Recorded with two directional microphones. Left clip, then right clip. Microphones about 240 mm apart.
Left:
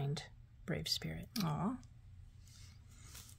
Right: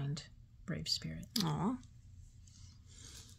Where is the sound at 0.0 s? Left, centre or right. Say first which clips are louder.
Left 2 dB; left.